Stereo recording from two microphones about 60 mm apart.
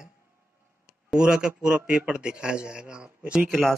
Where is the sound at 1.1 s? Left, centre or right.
Centre.